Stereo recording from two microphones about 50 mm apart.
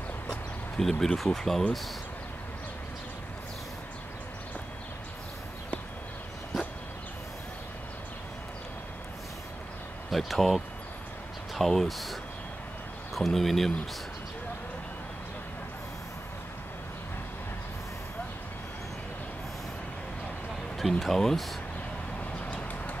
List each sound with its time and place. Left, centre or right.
0.7 s speech: centre
6.5 s dog: centre
10.1 s speech: centre
21.0 s speech: centre
22.4 s bird: left